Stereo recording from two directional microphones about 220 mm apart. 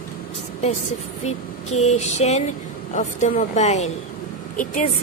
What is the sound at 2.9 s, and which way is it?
A woman's voice, 35° left (ahead or behind).